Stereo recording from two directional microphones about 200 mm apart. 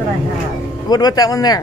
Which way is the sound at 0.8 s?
20° left (ahead or behind).